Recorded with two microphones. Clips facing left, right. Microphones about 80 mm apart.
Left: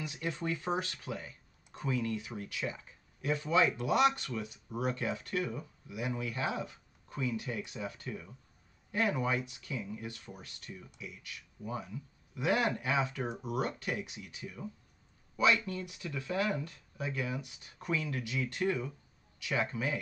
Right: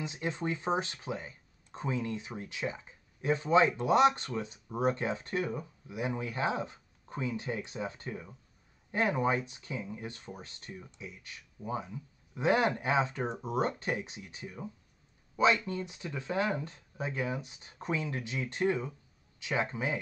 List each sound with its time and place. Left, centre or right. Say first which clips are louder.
0.0 s speech: right 2 dB; right